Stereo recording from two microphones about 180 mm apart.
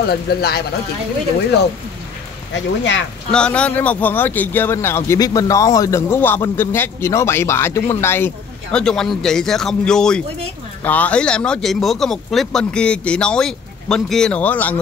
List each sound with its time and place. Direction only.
0.0 s speech: 60° left (ahead or behind)
2.5 s speech: 90° left
3.3 s speech: 5° left (ahead or behind)